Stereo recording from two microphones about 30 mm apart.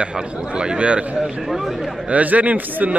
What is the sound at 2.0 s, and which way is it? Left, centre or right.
Speech, right.